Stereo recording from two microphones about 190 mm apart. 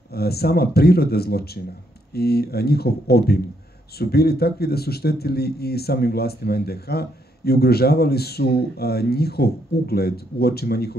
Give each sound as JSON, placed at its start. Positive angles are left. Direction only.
{"t": 0.1, "sound": "speech", "side_deg": 55}